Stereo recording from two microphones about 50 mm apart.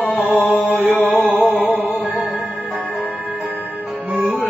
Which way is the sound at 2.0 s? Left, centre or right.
Centre.